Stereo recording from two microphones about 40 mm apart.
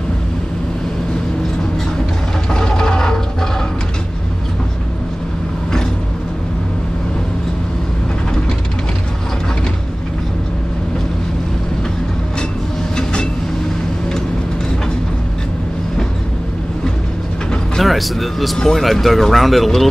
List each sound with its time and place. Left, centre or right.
2.5 s music: centre
12.9 s train: centre
17.7 s a sound: centre
18.8 s speech: centre